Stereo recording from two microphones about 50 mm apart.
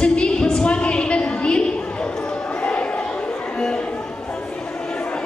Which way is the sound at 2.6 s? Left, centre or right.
Left.